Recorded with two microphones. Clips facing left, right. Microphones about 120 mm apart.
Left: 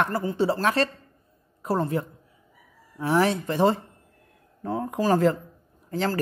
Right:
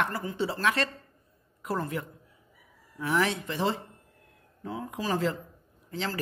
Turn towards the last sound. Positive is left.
turn(degrees=45)  # may be behind; listen again after turning